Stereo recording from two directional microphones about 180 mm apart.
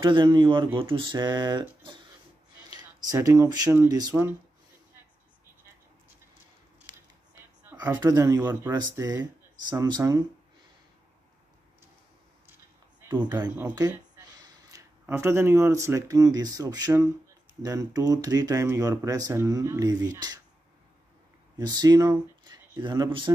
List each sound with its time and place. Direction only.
0.0 s speech: 25° right (ahead or behind)
8.0 s speech: 20° right (ahead or behind)
13.1 s speech: 20° right (ahead or behind)
21.5 s speech: 20° right (ahead or behind)